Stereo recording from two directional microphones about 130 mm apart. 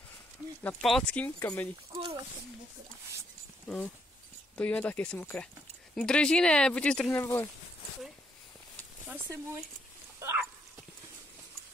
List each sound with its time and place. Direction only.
0.7 s speech: 5° left (ahead or behind)
1.9 s speech: 45° right (ahead or behind)
3.6 s speech: 10° left (ahead or behind)
7.2 s speech: 20° left (ahead or behind)
9.0 s speech: 15° right (ahead or behind)
10.1 s a sound: 20° right (ahead or behind)